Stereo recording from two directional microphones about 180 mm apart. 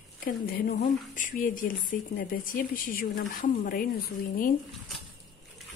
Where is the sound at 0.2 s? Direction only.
55° left (ahead or behind).